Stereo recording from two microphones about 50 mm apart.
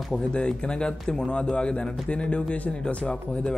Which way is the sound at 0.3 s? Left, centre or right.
Centre.